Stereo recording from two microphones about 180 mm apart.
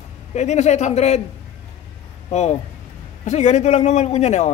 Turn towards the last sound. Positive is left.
turn(degrees=40)  # may be behind; listen again after turning